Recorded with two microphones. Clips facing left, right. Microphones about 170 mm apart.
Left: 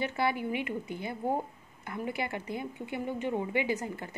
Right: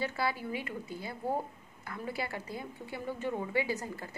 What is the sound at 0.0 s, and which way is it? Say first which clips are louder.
A woman's voice: left 3 dB; 20° left (ahead or behind).